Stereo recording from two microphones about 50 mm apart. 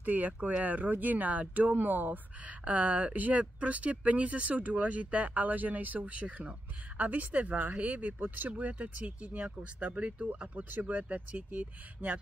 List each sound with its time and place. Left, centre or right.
0.0 s speech: right
10.5 s speech: right